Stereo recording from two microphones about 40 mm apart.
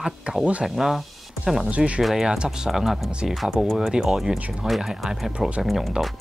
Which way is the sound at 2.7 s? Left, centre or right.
Centre.